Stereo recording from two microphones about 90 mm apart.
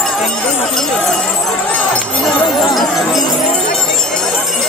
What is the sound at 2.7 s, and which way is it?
Music, centre (ahead or behind).